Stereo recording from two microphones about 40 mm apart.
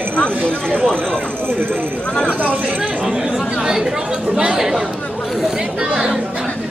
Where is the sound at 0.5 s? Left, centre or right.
Left.